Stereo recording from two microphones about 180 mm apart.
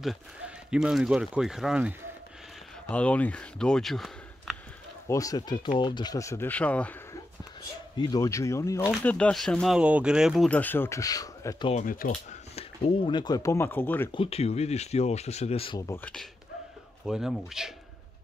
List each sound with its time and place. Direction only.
0.7 s speech: 5° right (ahead or behind)
2.9 s speech: 10° left (ahead or behind)
5.0 s speech: 20° left (ahead or behind)
8.0 s speech: 20° left (ahead or behind)
11.7 s speech: 50° left (ahead or behind); by 14.1 s 10° left (ahead or behind)
14.1 s speech: 30° left (ahead or behind)
15.9 s speech: 5° left (ahead or behind)